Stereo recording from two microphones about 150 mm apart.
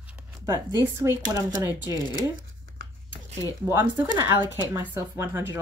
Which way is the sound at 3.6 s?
15° right (ahead or behind).